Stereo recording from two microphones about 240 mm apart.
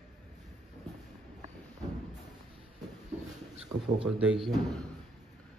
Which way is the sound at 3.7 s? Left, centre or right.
Right.